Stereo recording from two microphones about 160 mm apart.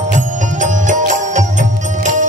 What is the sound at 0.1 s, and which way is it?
Music, 50° right (ahead or behind).